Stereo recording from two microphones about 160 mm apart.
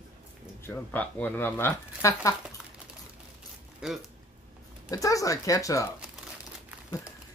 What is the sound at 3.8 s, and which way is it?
Speech, 5° right (ahead or behind).